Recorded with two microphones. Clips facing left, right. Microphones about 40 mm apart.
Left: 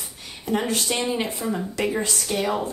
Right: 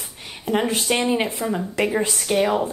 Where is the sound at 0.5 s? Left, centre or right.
Right.